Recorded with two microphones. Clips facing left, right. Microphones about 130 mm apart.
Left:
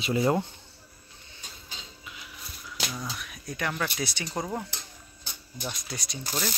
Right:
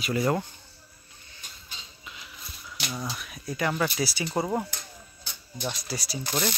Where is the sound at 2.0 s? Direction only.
5° left (ahead or behind).